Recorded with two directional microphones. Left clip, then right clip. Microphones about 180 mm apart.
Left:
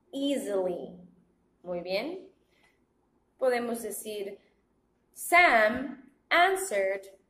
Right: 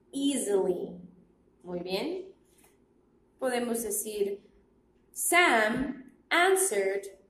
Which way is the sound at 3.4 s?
Centre (ahead or behind).